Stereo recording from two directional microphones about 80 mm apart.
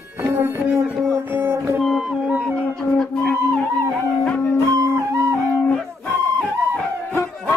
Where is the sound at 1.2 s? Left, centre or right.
Right.